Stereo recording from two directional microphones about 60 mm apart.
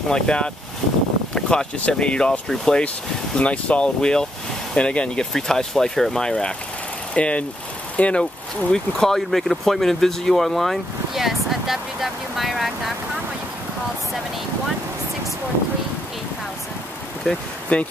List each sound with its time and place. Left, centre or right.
0.1 s speech: centre
17.7 s speech: centre